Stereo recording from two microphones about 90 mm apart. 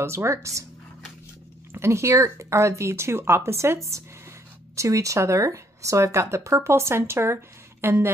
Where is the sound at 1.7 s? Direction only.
30° right (ahead or behind).